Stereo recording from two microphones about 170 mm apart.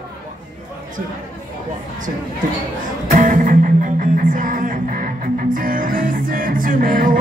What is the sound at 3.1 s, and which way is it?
Music, 50° right (ahead or behind).